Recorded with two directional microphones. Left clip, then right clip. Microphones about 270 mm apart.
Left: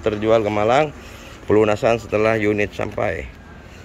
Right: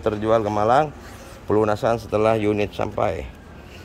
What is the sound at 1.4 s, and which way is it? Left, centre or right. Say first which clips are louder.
Speech: left 4 dB; centre.